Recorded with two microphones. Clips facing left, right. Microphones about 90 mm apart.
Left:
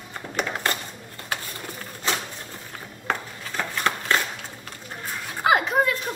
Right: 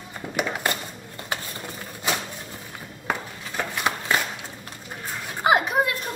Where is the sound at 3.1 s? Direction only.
10° right (ahead or behind).